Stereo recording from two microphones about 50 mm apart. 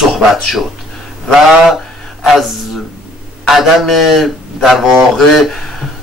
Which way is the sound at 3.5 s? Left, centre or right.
Centre.